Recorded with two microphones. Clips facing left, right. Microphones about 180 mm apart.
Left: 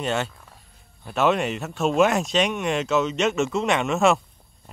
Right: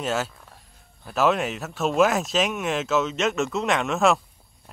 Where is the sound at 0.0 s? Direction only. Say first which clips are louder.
Left 1 dB; centre (ahead or behind).